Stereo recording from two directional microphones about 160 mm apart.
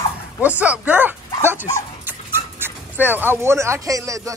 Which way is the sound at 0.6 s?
10° right (ahead or behind).